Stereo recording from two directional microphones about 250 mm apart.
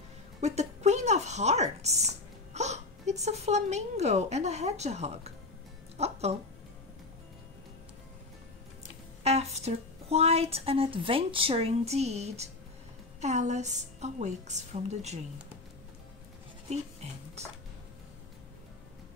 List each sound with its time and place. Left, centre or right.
0.4 s a sound: right
5.9 s music: right
9.2 s speech: right
16.6 s speech: right